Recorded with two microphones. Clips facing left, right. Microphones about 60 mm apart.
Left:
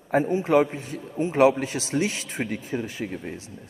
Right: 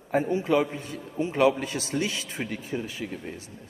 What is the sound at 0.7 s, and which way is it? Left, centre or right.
A man's voice, left.